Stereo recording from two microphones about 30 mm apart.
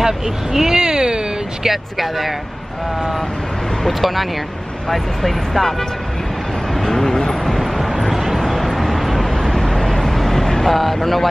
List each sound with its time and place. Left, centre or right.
0.0 s vehicle: centre
1.7 s speech: centre
3.8 s speech: centre
6.7 s vehicle: centre
9.2 s vehicle: centre
10.4 s speech: centre